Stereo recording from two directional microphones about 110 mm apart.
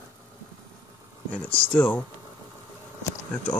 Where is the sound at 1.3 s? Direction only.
10° left (ahead or behind).